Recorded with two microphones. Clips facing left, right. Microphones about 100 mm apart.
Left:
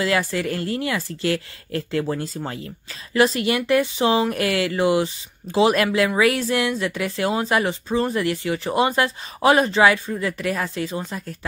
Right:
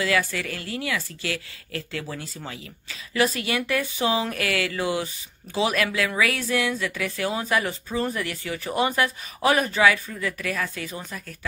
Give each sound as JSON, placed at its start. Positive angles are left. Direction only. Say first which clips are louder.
{"t": 0.0, "sound": "speech", "louder": "left 3 dB", "side_deg": 30}
{"t": 3.2, "sound": "speech", "louder": "left 5 dB", "side_deg": 25}